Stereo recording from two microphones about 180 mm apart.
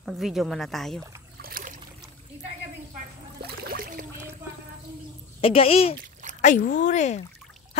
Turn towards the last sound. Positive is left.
turn(degrees=40)  # may be behind; listen again after turning